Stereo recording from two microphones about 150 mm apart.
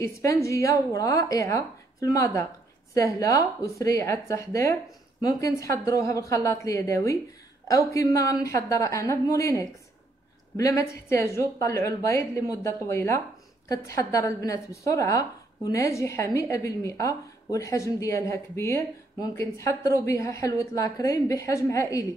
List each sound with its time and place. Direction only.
0.0 s a woman's voice: 20° left (ahead or behind)